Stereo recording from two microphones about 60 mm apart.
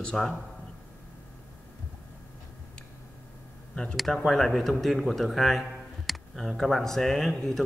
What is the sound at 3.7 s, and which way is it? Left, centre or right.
A man's voice, centre.